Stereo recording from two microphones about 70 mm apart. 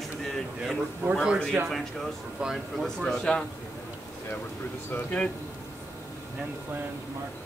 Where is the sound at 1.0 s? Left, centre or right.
Right.